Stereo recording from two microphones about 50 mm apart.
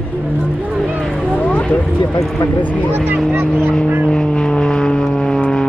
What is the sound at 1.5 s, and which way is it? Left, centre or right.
Speech, left.